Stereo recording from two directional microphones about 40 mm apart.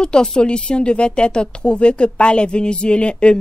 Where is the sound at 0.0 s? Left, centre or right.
Left.